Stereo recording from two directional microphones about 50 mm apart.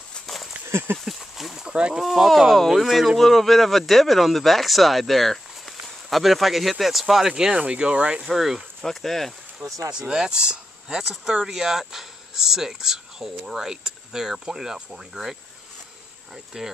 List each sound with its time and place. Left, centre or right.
0.7 s a sound: right
0.9 s speech: centre
1.7 s speech: centre
2.0 s speech: centre
7.3 s speech: centre
8.3 s speech: centre
8.8 s speech: centre
9.9 s speech: centre
16.5 s speech: centre